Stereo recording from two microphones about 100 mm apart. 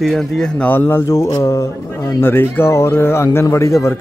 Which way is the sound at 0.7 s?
20° left (ahead or behind).